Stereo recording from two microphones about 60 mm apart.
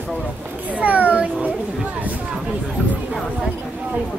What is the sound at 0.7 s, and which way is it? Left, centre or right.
Speech, right.